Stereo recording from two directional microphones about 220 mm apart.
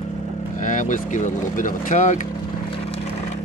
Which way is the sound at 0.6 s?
35° left (ahead or behind).